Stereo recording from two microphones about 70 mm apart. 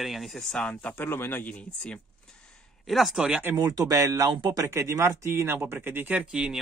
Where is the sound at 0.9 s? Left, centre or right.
Left.